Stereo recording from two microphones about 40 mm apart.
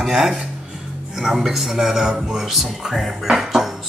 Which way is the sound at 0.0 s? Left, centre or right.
Centre.